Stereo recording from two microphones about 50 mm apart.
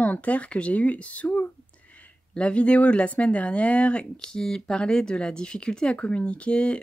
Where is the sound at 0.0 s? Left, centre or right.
Left.